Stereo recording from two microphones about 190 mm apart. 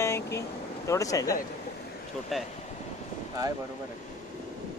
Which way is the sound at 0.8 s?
15° left (ahead or behind).